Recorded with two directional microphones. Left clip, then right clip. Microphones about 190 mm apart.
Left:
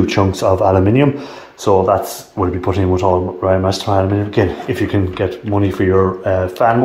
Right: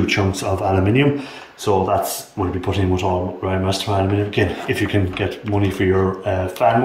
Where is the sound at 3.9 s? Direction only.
45° left (ahead or behind).